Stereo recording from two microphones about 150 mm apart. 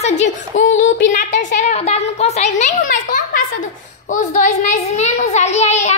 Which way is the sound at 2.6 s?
60° left (ahead or behind).